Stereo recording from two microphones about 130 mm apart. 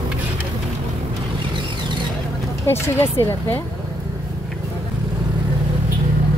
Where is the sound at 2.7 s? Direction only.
20° left (ahead or behind).